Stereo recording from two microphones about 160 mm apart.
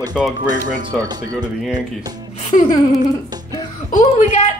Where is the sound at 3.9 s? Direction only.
45° left (ahead or behind).